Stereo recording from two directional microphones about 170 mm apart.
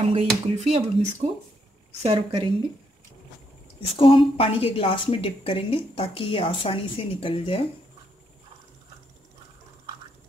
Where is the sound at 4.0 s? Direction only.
30° left (ahead or behind).